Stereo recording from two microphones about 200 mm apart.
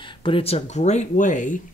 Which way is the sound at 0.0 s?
25° left (ahead or behind).